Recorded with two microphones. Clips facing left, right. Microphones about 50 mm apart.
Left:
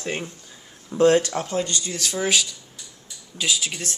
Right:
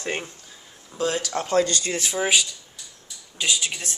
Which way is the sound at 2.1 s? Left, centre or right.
Centre.